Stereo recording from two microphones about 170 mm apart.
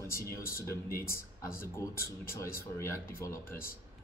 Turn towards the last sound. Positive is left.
turn(degrees=15)  # may be behind; listen again after turning